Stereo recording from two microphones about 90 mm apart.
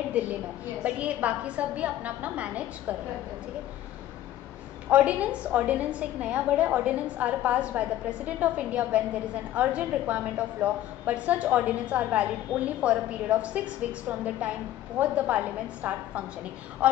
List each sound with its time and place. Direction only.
0.1 s a woman's voice: 15° right (ahead or behind)
4.8 s a woman's voice: 15° right (ahead or behind)